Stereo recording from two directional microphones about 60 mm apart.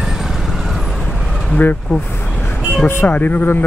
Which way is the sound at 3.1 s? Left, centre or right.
Left.